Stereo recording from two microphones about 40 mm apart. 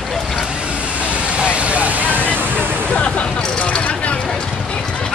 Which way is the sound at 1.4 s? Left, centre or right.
Right.